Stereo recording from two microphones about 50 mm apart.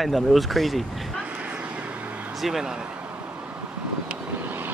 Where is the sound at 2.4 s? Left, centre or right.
Centre.